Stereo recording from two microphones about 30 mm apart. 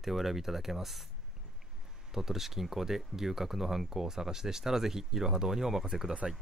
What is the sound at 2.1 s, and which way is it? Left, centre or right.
Speech, centre.